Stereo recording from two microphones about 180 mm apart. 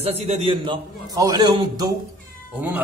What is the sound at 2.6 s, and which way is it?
Speech, 10° right (ahead or behind).